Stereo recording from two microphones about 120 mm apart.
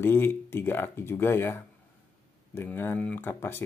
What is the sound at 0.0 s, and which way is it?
Speech, 20° left (ahead or behind).